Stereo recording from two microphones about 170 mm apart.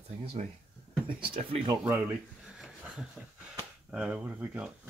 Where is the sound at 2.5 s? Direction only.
5° right (ahead or behind).